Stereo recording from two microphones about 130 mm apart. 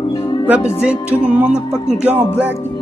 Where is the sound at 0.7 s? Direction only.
10° right (ahead or behind).